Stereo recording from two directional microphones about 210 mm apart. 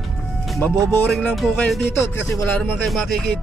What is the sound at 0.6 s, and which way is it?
Speech, 5° left (ahead or behind).